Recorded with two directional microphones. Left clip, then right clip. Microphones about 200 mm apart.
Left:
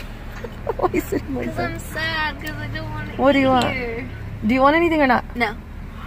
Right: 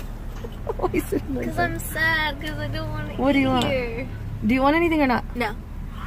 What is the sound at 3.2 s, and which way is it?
Speech, centre (ahead or behind).